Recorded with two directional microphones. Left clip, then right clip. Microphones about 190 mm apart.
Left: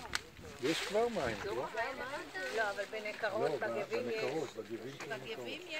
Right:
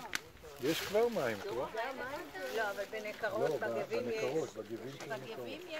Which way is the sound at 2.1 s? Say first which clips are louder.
Left 1 dB; 40° right (ahead or behind).